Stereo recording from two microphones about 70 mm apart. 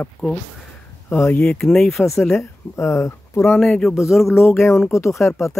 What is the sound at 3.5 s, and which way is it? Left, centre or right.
Speech, centre.